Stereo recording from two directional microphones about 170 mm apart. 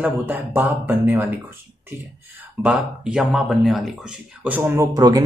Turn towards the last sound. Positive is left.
turn(degrees=-20)  # may be behind; listen again after turning